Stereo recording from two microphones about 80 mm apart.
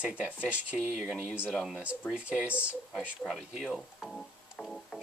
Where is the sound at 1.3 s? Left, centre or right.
Centre.